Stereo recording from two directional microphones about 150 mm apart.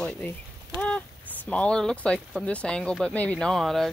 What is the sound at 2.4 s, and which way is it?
Speech, 5° left (ahead or behind).